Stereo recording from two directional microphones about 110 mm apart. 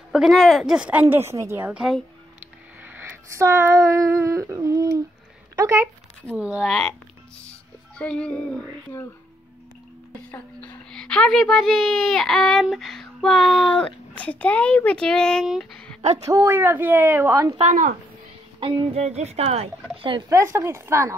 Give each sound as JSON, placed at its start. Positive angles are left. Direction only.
{"t": 0.1, "sound": "speech", "side_deg": 0}
{"t": 1.7, "sound": "speech", "side_deg": -5}
{"t": 2.8, "sound": "a sound", "side_deg": -15}
{"t": 5.6, "sound": "a woman's voice", "side_deg": -25}
{"t": 6.3, "sound": "speech", "side_deg": -10}
{"t": 6.7, "sound": "speech", "side_deg": 5}
{"t": 8.0, "sound": "speech", "side_deg": 10}
{"t": 10.9, "sound": "speech", "side_deg": 5}
{"t": 16.3, "sound": "a woman's voice", "side_deg": -20}
{"t": 18.6, "sound": "music", "side_deg": -50}
{"t": 18.9, "sound": "speech", "side_deg": -75}
{"t": 20.2, "sound": "a woman's voice", "side_deg": -25}